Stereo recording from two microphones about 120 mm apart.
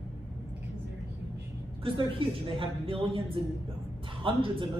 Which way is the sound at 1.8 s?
50° right (ahead or behind).